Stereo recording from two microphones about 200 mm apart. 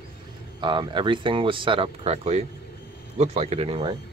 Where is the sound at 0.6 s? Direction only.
25° right (ahead or behind).